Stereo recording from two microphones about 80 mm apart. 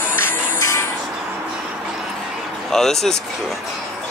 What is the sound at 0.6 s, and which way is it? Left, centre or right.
Vehicle, left.